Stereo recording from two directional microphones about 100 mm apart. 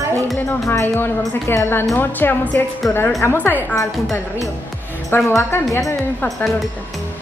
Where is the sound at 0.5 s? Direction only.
25° left (ahead or behind).